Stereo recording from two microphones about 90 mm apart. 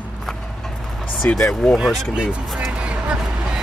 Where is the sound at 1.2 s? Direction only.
20° left (ahead or behind).